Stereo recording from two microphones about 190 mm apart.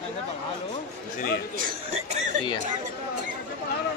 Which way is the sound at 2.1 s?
35° right (ahead or behind).